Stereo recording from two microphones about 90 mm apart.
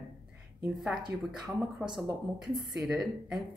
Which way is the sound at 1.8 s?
20° right (ahead or behind).